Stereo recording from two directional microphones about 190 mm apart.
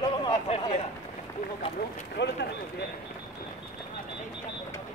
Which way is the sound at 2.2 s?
65° left (ahead or behind).